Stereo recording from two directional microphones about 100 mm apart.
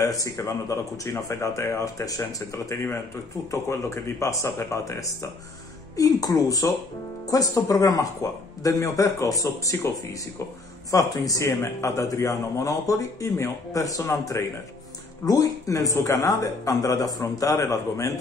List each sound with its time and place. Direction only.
0.0 s a man's voice: 35° left (ahead or behind)